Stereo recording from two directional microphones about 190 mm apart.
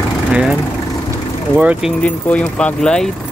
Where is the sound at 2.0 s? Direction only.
5° left (ahead or behind).